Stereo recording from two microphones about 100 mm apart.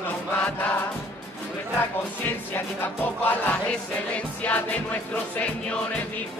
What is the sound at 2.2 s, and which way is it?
Music, 20° left (ahead or behind).